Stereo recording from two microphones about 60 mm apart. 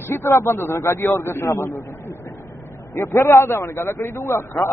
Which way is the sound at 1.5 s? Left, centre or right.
Left.